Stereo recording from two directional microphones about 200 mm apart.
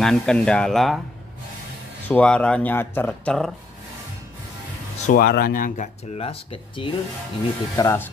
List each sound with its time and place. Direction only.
0.0 s speech: 5° left (ahead or behind)
2.0 s speech: 5° left (ahead or behind)
5.0 s speech: 45° left (ahead or behind)
6.1 s speech: 30° left (ahead or behind)
7.7 s speech: 15° left (ahead or behind)